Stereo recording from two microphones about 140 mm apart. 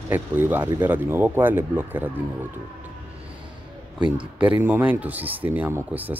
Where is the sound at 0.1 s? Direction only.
15° right (ahead or behind).